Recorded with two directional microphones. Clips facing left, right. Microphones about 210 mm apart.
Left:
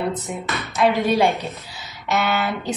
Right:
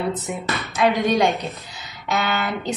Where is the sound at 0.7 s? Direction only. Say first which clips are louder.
Left 1 dB; 5° left (ahead or behind).